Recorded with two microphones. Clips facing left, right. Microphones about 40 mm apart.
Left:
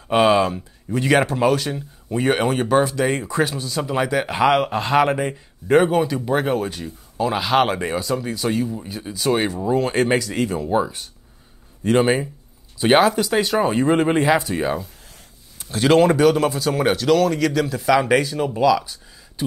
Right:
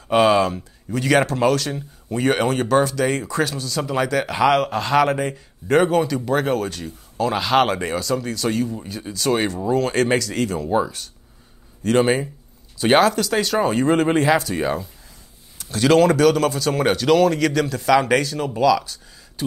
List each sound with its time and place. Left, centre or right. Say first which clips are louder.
0.1 s speech: even; centre
15.6 s speech: even; left
18.6 s a sound: right 1 dB; centre